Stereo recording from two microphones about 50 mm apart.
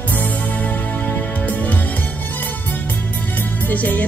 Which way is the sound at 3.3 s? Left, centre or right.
Left.